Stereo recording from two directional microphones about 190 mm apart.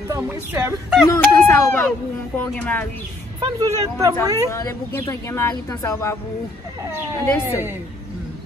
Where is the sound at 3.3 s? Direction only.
20° right (ahead or behind).